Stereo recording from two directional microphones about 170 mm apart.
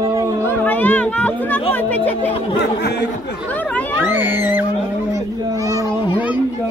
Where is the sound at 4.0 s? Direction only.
15° right (ahead or behind).